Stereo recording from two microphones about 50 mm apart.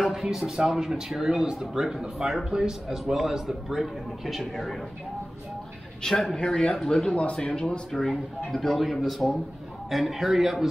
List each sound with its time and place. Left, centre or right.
0.0 s speech: centre
3.8 s speech: centre
6.0 s speech: centre
7.9 s speech: centre